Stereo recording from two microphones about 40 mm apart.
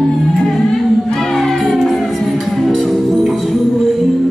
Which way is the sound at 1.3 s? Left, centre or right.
Centre.